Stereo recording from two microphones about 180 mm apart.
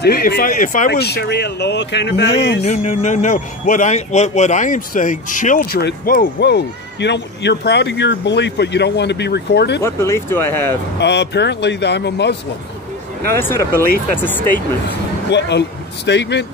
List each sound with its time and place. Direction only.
0.0 s speech: 60° left (ahead or behind)
2.6 s a man's voice: 40° left (ahead or behind)
5.8 s speech: 60° left (ahead or behind)
9.8 s speech: 15° left (ahead or behind)
11.0 s speech: 70° left (ahead or behind)
13.4 s speech: 15° left (ahead or behind)
15.2 s speech: 75° left (ahead or behind)